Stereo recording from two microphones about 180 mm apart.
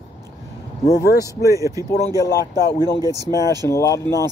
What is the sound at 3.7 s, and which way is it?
Speech, 15° left (ahead or behind).